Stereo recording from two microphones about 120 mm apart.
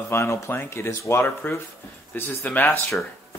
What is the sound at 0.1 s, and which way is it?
Speech, 25° left (ahead or behind).